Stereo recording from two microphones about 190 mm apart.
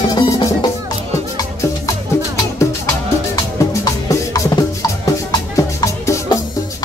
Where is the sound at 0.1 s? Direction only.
25° left (ahead or behind).